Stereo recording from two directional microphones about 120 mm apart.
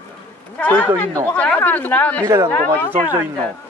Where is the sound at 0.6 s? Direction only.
10° left (ahead or behind).